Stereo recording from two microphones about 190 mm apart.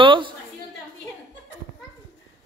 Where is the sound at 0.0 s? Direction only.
25° right (ahead or behind).